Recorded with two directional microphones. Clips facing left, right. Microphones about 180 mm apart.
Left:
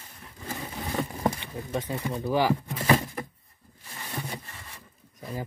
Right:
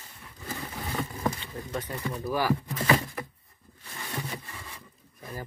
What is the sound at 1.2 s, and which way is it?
Speech, 15° left (ahead or behind).